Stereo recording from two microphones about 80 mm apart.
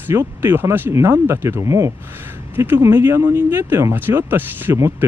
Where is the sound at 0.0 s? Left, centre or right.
Right.